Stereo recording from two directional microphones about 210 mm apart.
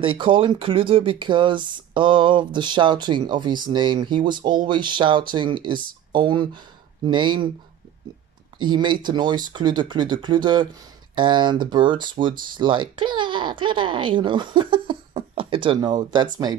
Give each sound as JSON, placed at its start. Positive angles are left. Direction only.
{"t": 0.0, "sound": "speech", "side_deg": -25}
{"t": 8.5, "sound": "speech", "side_deg": -20}